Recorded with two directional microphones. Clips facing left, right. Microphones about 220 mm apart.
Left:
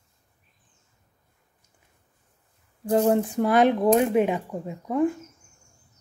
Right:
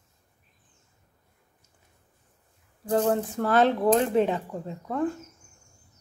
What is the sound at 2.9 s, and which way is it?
Speech, 15° left (ahead or behind).